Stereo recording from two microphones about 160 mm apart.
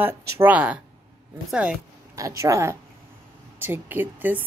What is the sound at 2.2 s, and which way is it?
A woman's voice, 20° right (ahead or behind).